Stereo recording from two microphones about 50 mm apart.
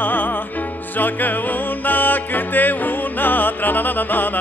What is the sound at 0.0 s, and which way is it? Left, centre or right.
Music, left.